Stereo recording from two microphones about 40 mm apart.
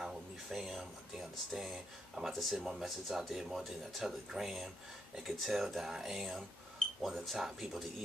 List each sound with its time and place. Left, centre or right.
0.5 s speech: centre
2.2 s speech: right
2.5 s speech: centre